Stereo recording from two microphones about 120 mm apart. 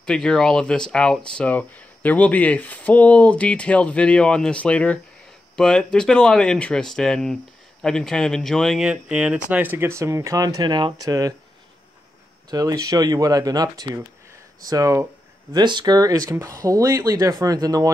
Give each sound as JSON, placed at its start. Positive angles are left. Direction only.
{"t": 0.0, "sound": "speech", "side_deg": 5}
{"t": 12.4, "sound": "speech", "side_deg": -35}